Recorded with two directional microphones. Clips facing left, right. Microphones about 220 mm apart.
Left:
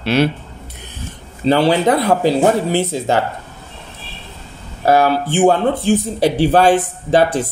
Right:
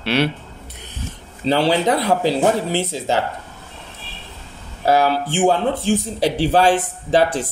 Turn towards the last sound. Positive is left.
turn(degrees=55)  # may be behind; listen again after turning